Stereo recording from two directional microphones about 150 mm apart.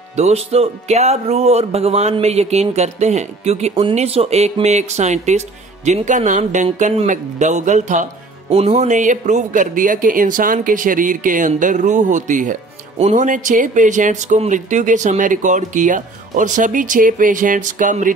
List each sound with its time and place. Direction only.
0.1 s speech: 45° right (ahead or behind); by 18.1 s 60° right (ahead or behind)